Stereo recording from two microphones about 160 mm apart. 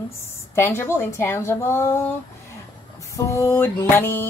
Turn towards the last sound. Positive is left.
turn(degrees=15)  # may be behind; listen again after turning